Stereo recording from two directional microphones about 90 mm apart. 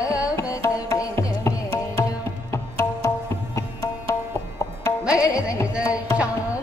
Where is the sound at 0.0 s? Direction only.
40° left (ahead or behind).